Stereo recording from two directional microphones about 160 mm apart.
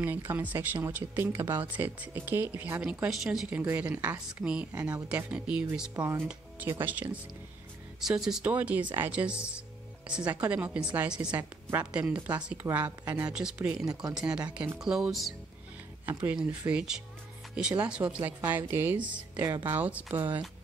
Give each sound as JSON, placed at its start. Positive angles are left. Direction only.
{"t": 0.0, "sound": "speech", "side_deg": -15}
{"t": 4.7, "sound": "a woman's voice", "side_deg": -25}
{"t": 5.1, "sound": "speech", "side_deg": -5}
{"t": 12.6, "sound": "a woman's voice", "side_deg": -20}
{"t": 13.3, "sound": "speech", "side_deg": -5}
{"t": 16.1, "sound": "speech", "side_deg": -15}
{"t": 18.9, "sound": "a woman's voice", "side_deg": -30}
{"t": 19.3, "sound": "speech", "side_deg": -15}